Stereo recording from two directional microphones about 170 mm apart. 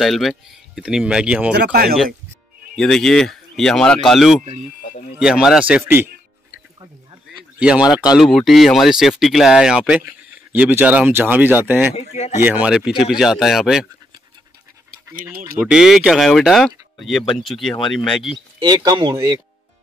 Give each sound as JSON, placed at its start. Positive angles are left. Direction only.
{"t": 0.0, "sound": "speech", "side_deg": 0}
{"t": 1.5, "sound": "speech", "side_deg": -70}
{"t": 2.7, "sound": "speech", "side_deg": 5}
{"t": 6.8, "sound": "a sound", "side_deg": -30}
{"t": 7.5, "sound": "speech", "side_deg": -5}
{"t": 15.0, "sound": "speech", "side_deg": -10}
{"t": 18.9, "sound": "speech", "side_deg": -25}